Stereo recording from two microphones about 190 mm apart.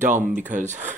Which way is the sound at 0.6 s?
40° right (ahead or behind).